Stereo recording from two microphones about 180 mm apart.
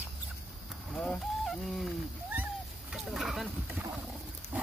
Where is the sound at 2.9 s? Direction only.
Centre (ahead or behind).